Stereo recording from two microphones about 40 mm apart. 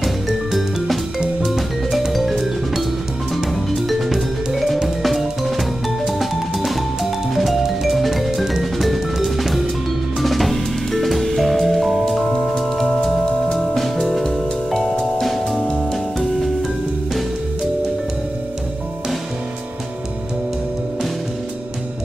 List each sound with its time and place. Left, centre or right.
0.5 s music: centre